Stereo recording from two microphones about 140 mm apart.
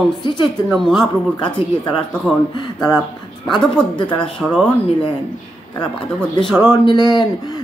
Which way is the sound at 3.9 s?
35° left (ahead or behind).